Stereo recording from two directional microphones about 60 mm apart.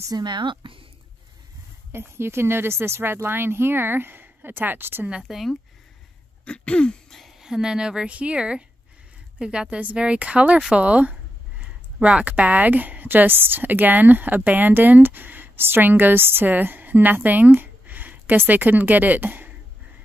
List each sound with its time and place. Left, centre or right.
0.1 s speech: right
1.9 s speech: right
5.3 s speech: centre
6.4 s throat clearing: centre
7.2 s speech: centre; by 19.5 s right